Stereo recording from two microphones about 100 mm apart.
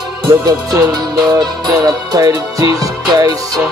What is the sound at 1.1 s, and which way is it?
Music, 45° right (ahead or behind).